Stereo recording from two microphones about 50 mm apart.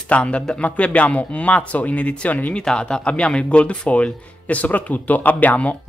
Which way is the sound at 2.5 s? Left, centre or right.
Centre.